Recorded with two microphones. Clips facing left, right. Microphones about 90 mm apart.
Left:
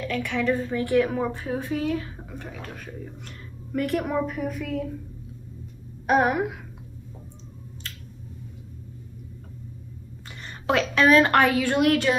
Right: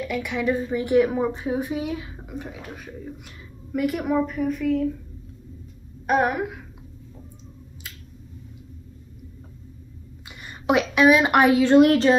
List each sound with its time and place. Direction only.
0.1 s a woman's voice: 15° right (ahead or behind)
6.0 s a woman's voice: centre (ahead or behind)
7.8 s finger snapping: 10° right (ahead or behind)
10.4 s a woman's voice: 15° right (ahead or behind)